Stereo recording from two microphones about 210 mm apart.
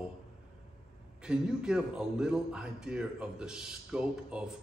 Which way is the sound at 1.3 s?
5° right (ahead or behind).